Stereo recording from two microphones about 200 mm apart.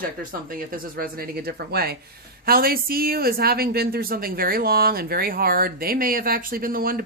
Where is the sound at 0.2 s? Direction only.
45° right (ahead or behind).